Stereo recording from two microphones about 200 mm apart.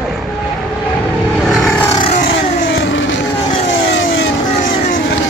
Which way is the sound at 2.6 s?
70° left (ahead or behind).